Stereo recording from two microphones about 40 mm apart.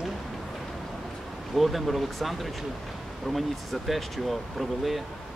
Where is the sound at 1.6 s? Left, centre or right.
Centre.